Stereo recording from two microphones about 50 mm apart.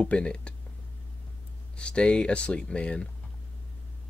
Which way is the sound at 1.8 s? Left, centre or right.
Left.